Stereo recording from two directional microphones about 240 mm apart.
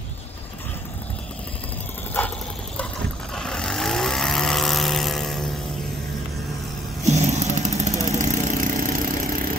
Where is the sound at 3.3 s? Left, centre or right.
Centre.